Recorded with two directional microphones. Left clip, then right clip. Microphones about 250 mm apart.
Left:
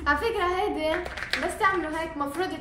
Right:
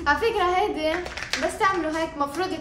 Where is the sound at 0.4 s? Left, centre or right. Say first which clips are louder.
Right 4 dB; centre.